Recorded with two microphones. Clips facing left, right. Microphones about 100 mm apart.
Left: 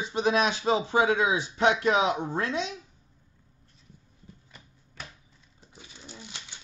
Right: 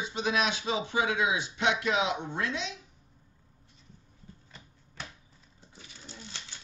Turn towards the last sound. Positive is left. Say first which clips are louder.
# left 1 dB
turn(degrees=15)  # may be behind; listen again after turning